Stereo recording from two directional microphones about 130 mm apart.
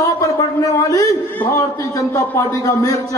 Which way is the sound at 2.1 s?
25° left (ahead or behind).